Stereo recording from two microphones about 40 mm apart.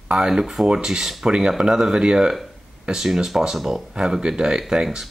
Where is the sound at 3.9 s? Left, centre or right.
Right.